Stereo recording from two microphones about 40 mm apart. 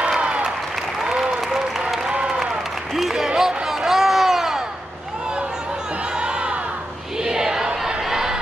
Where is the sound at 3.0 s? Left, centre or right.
Centre.